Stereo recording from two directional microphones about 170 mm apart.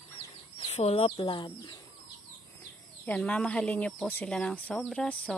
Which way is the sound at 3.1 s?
5° left (ahead or behind).